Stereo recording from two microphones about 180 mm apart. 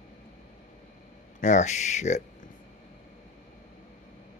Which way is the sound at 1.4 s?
40° left (ahead or behind).